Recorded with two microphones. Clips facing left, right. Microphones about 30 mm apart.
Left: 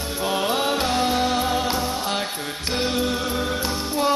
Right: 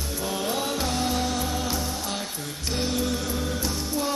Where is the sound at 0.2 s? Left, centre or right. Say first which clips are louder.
Left 6 dB; left.